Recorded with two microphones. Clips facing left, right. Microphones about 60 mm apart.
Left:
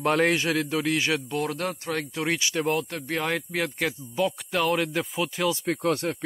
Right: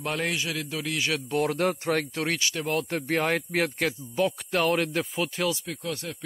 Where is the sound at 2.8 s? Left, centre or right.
Centre.